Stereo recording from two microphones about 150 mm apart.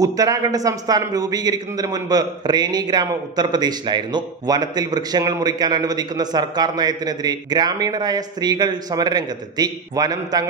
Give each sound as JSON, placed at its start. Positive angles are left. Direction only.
{"t": 0.0, "sound": "a man's voice", "side_deg": -25}